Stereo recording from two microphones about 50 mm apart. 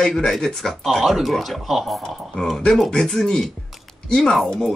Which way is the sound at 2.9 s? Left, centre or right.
Centre.